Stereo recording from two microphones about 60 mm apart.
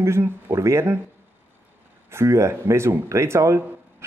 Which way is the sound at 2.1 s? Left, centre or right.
Right.